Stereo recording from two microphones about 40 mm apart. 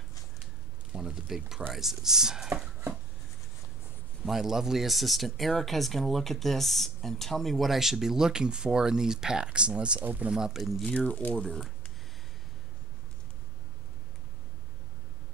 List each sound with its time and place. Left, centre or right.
0.9 s speech: centre
4.3 s speech: centre
9.9 s speech: right
10.3 s speech: centre
10.9 s speech: left
11.3 s speech: centre